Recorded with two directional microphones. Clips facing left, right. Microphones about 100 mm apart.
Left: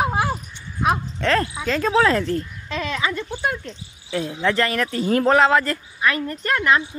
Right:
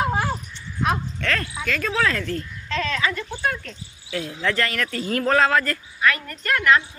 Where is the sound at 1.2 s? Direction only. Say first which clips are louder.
Left 5 dB; 25° left (ahead or behind).